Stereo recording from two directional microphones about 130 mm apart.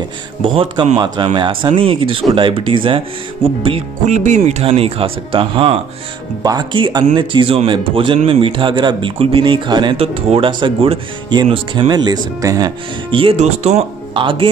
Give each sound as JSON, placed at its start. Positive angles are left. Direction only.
{"t": 0.9, "sound": "speech", "side_deg": -35}
{"t": 4.0, "sound": "speech", "side_deg": -70}
{"t": 6.4, "sound": "speech", "side_deg": -30}
{"t": 13.1, "sound": "speech", "side_deg": -45}
{"t": 13.4, "sound": "speech", "side_deg": -55}
{"t": 14.1, "sound": "speech", "side_deg": -40}